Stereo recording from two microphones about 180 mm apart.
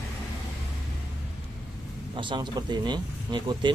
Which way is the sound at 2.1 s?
25° right (ahead or behind).